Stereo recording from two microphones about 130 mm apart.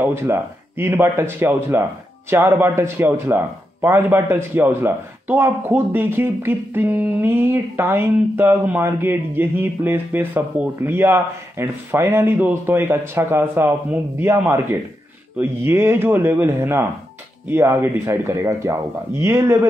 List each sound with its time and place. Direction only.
0.0 s a man's voice: 20° right (ahead or behind)